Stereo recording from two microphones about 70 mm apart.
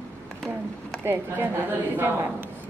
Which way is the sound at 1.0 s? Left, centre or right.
Right.